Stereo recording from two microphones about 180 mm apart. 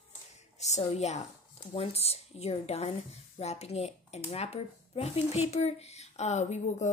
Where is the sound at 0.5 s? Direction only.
40° left (ahead or behind).